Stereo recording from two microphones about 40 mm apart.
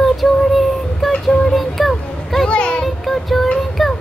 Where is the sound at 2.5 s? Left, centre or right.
Left.